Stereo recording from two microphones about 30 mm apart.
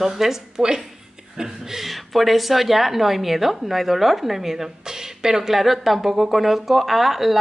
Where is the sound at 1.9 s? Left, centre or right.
Centre.